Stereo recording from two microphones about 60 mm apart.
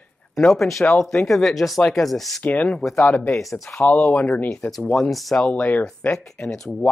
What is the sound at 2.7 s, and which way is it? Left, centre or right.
Speech, centre.